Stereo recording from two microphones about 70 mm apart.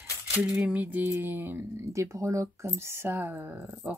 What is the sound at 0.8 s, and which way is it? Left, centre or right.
Speech, right.